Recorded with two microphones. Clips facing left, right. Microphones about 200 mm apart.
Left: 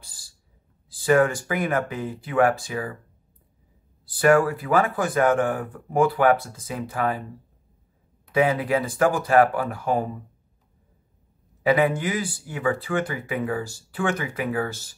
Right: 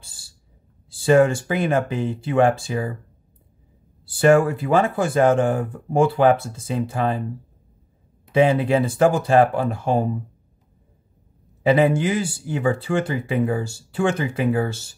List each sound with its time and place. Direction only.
0.0 s owl: 25° right (ahead or behind)
0.9 s speech: 25° right (ahead or behind)
4.0 s speech: 25° right (ahead or behind)
8.3 s speech: 25° right (ahead or behind)
11.6 s speech: 25° right (ahead or behind)